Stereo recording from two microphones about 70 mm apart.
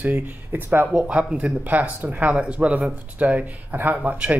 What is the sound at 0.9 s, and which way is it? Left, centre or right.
Speech, centre.